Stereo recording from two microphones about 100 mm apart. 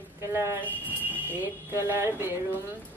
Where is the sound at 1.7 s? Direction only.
30° right (ahead or behind).